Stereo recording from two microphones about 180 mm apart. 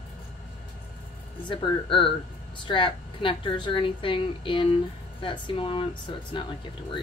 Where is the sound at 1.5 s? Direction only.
30° left (ahead or behind).